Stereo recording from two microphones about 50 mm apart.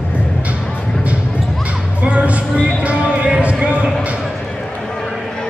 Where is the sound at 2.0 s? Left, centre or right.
Right.